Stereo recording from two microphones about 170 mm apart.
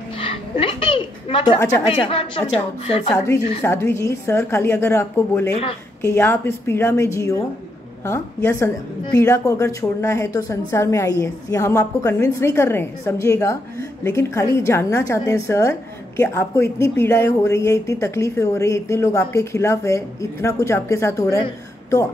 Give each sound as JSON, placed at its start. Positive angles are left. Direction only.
{"t": 0.2, "sound": "a sound", "side_deg": 35}
{"t": 1.9, "sound": "a woman's voice", "side_deg": 35}
{"t": 3.6, "sound": "a woman's voice", "side_deg": 15}